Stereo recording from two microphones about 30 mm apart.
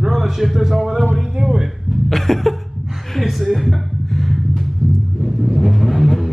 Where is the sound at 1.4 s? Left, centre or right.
Centre.